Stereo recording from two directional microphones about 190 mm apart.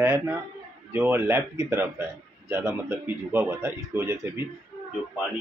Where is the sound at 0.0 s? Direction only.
15° right (ahead or behind).